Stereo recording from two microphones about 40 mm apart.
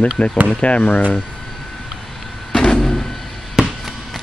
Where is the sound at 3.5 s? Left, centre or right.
Centre.